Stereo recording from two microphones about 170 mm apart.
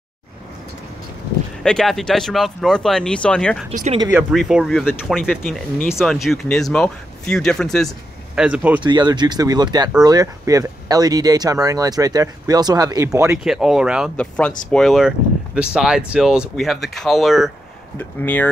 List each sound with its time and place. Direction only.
1.6 s speech: 5° left (ahead or behind)
3.7 s speech: 45° right (ahead or behind)
4.1 s speech: 5° right (ahead or behind)
8.8 s speech: 25° right (ahead or behind)
13.3 s speech: 5° right (ahead or behind)
14.1 s speech: 5° left (ahead or behind)
17.9 s speech: 10° left (ahead or behind)